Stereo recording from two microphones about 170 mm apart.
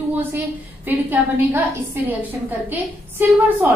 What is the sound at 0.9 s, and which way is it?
A woman's voice, 10° right (ahead or behind).